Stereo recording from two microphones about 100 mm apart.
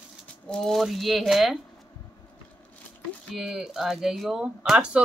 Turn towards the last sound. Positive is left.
turn(degrees=-5)  # may be behind; listen again after turning